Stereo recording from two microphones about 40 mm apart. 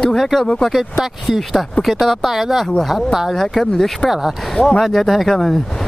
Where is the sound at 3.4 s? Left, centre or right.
Centre.